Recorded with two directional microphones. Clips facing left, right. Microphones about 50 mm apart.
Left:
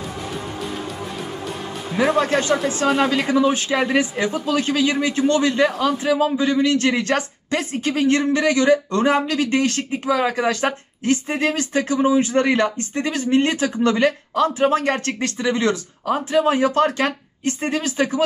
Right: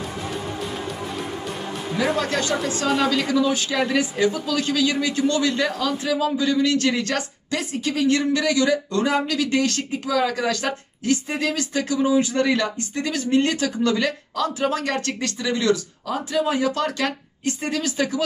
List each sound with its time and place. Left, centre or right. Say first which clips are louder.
2.1 s speech: left 4 dB; left